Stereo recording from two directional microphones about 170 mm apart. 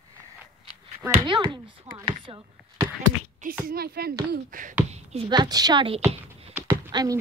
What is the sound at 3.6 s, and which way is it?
Speech, 60° right (ahead or behind).